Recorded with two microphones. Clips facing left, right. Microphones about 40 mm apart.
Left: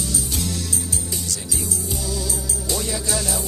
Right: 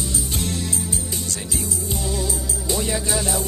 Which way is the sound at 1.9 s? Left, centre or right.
Right.